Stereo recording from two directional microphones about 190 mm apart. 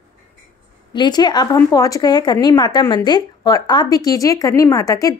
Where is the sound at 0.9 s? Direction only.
20° left (ahead or behind).